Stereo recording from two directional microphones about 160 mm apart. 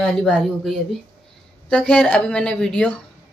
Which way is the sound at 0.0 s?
5° left (ahead or behind).